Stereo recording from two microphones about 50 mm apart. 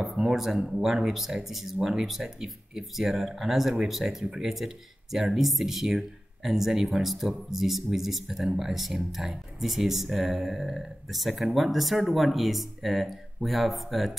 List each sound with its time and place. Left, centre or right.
0.0 s speech: centre